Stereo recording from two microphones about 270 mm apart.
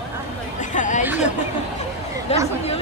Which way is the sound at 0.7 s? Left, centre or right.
Left.